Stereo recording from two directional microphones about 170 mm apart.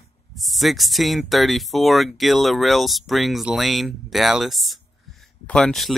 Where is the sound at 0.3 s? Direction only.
Centre (ahead or behind).